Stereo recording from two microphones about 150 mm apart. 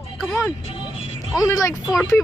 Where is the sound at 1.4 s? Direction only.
20° left (ahead or behind).